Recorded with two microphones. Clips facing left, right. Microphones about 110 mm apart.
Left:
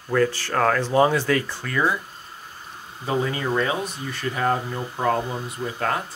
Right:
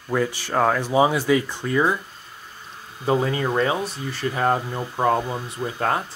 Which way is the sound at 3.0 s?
30° right (ahead or behind).